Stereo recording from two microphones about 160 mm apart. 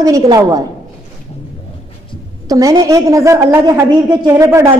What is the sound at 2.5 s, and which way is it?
Speech, 20° right (ahead or behind).